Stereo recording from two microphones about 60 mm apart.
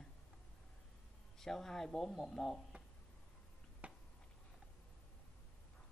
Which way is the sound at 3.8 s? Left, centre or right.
Right.